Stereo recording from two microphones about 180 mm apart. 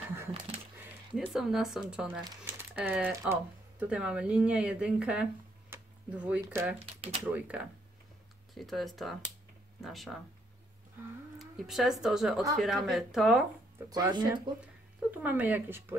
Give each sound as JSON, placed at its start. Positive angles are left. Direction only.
{"t": 1.1, "sound": "speech", "side_deg": 0}
{"t": 6.8, "sound": "speech", "side_deg": -30}
{"t": 7.2, "sound": "speech", "side_deg": -10}
{"t": 11.3, "sound": "speech", "side_deg": 0}
{"t": 13.8, "sound": "speech", "side_deg": -20}
{"t": 14.6, "sound": "speech", "side_deg": -10}